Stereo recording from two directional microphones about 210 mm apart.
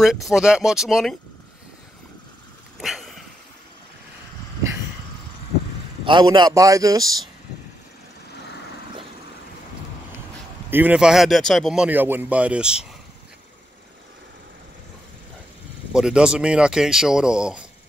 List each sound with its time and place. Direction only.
0.0 s speech: centre (ahead or behind)
2.8 s a sound: centre (ahead or behind)
6.0 s a man's voice: 20° right (ahead or behind)
10.7 s speech: 5° right (ahead or behind)
15.9 s speech: 5° right (ahead or behind)